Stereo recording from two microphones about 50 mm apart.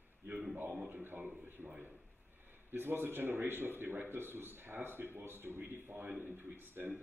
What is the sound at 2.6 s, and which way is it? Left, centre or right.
Speech, right.